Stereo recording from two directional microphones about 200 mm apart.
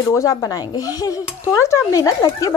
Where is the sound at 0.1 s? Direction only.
15° left (ahead or behind).